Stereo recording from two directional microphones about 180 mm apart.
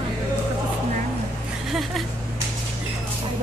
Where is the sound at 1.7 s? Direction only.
Centre (ahead or behind).